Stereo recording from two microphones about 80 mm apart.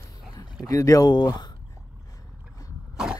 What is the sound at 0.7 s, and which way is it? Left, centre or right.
Speech, left.